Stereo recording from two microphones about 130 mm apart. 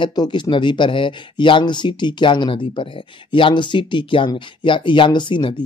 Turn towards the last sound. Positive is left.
turn(degrees=40)  # may be behind; listen again after turning